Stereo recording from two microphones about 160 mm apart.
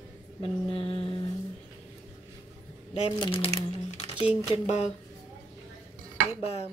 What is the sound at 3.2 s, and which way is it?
A woman's voice, 35° left (ahead or behind).